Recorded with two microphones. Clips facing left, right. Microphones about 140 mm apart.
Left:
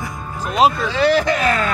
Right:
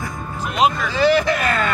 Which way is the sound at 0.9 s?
5° right (ahead or behind).